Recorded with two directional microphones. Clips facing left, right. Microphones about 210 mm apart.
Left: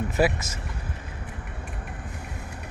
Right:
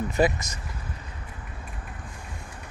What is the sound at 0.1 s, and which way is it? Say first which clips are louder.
Speech: even; 5° left (ahead or behind).